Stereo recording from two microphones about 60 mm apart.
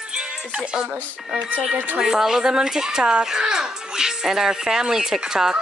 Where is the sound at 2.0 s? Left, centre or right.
Centre.